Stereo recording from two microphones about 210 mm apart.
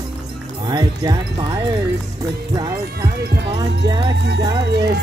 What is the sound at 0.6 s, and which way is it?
Music, 20° right (ahead or behind).